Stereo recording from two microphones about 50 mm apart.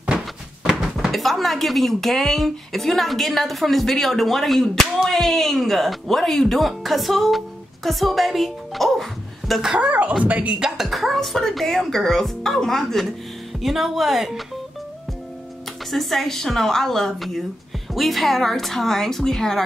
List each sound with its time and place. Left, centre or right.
0.7 s speech: centre
9.8 s speech: right
10.6 s a woman's voice: centre
15.9 s a woman's voice: centre